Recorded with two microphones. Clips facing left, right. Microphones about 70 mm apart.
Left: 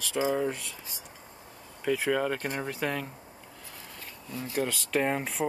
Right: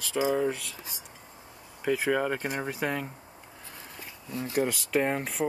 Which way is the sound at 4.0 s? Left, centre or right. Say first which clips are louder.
Right 3 dB; centre.